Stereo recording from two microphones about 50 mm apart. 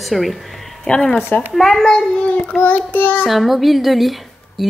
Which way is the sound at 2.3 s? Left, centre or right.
Left.